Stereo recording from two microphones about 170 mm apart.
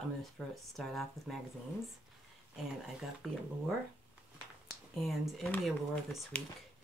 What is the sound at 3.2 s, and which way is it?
Speech, centre (ahead or behind).